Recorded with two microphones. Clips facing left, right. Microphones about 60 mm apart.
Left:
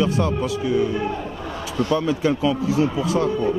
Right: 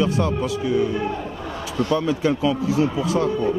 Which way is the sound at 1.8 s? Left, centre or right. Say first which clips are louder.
Even; centre.